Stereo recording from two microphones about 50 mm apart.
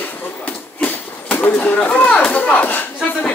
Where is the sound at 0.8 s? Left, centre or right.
Left.